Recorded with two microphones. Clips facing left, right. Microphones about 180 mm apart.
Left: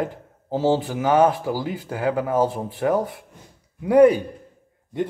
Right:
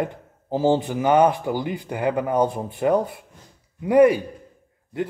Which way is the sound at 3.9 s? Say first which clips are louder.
Left 1 dB; 10° right (ahead or behind).